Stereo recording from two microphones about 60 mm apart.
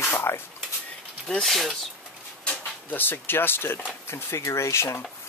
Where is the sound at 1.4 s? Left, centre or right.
Centre.